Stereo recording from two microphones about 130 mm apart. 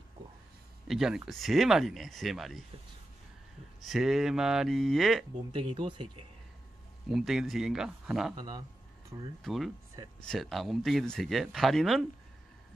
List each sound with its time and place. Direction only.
0.8 s speech: 5° right (ahead or behind)
3.9 s speech: centre (ahead or behind)
5.5 s speech: 45° right (ahead or behind)
7.1 s speech: 5° right (ahead or behind)
8.4 s speech: 30° right (ahead or behind)
9.4 s speech: centre (ahead or behind)